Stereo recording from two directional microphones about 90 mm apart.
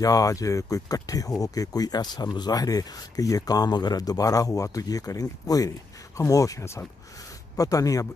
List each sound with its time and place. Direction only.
0.0 s speech: 40° left (ahead or behind)
7.5 s speech: 40° left (ahead or behind)